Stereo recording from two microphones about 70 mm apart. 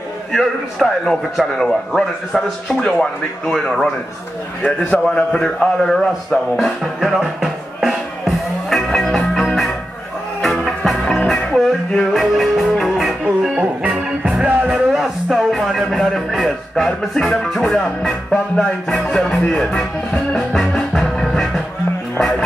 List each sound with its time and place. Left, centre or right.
0.3 s a man's voice: centre
5.0 s a sound: centre
10.4 s music: centre
13.6 s music: centre
14.7 s music: centre
17.5 s a man's voice: centre
20.3 s music: centre